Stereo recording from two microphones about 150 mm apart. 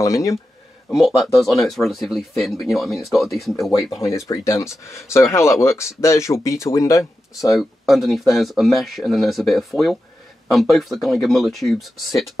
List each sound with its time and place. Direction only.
0.0 s speech: 20° left (ahead or behind)
0.9 s speech: centre (ahead or behind)
4.3 s speech: 20° left (ahead or behind)
7.5 s speech: centre (ahead or behind)